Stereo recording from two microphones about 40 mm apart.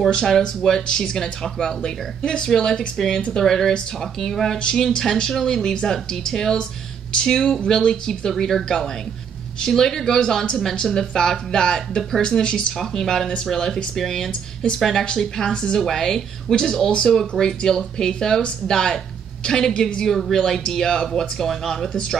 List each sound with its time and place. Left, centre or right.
0.1 s speech: centre
20.1 s speech: centre